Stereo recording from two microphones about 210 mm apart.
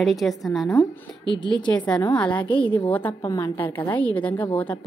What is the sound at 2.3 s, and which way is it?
Speech, 25° left (ahead or behind).